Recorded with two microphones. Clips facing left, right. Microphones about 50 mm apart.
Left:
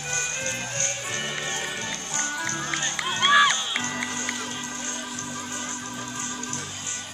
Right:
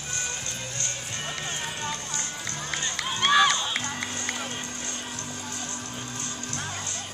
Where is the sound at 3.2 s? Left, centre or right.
Centre.